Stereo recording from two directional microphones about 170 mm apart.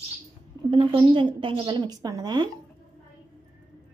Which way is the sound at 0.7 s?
30° right (ahead or behind).